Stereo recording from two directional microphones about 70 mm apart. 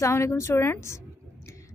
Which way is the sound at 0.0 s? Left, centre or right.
Left.